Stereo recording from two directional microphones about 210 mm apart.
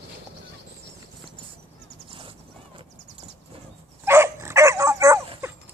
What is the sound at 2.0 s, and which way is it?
Clip-clop, 25° right (ahead or behind).